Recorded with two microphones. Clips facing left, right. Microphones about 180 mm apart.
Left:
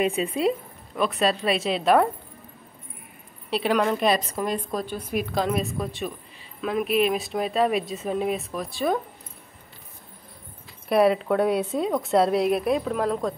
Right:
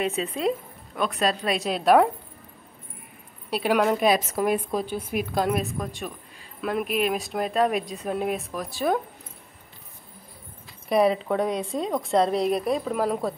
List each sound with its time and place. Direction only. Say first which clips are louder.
0.0 s speech: left 2 dB; 10° left (ahead or behind)
3.4 s a woman's voice: right 1 dB; 5° right (ahead or behind)
10.9 s speech: left 1 dB; centre (ahead or behind)